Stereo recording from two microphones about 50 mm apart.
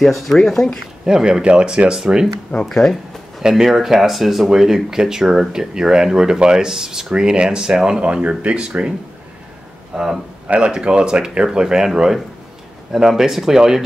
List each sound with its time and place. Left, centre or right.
0.0 s speech: centre
1.0 s speech: centre
2.7 s speech: centre
3.4 s speech: centre
9.9 s speech: centre
10.8 s speech: centre